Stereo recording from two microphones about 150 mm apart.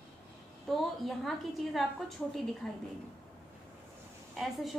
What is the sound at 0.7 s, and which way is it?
A woman's voice, centre (ahead or behind).